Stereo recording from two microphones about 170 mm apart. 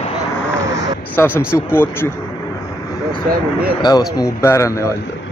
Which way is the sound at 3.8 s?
25° left (ahead or behind).